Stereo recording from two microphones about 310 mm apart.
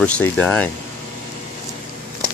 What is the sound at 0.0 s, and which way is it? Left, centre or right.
Speech, centre.